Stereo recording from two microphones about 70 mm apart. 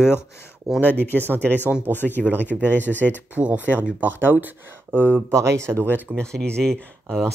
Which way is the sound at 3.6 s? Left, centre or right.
Left.